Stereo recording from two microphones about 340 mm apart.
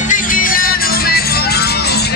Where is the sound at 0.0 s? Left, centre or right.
Left.